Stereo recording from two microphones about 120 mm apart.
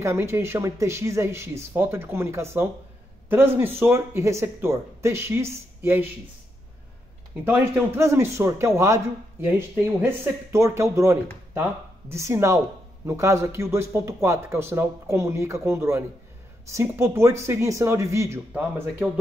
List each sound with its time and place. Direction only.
0.0 s speech: 20° right (ahead or behind)
7.4 s speech: 20° right (ahead or behind)